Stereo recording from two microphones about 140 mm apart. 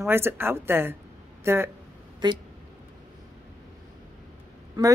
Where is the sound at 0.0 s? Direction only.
15° right (ahead or behind).